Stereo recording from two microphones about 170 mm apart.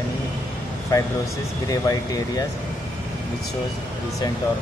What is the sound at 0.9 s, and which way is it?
Speech, 20° left (ahead or behind).